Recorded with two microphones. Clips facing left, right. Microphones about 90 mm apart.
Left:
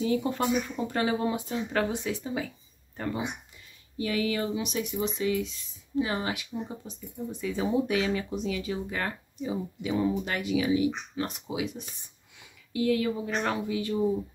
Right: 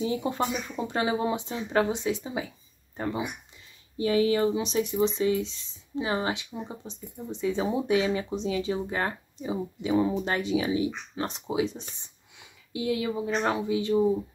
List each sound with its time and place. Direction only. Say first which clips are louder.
0.0 s speech: left 1 dB; 20° right (ahead or behind)
12.4 s speech: left 4 dB; 20° right (ahead or behind)